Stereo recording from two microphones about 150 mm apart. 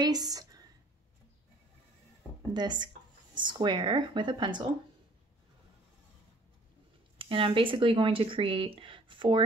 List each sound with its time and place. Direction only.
0.0 s a sound: 25° right (ahead or behind)
2.5 s speech: 30° right (ahead or behind)
7.2 s speech: 35° right (ahead or behind)